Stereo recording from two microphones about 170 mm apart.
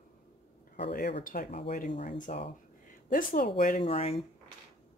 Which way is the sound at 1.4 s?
35° left (ahead or behind).